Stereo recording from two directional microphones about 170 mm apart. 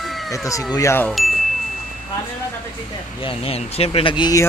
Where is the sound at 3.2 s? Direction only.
35° left (ahead or behind).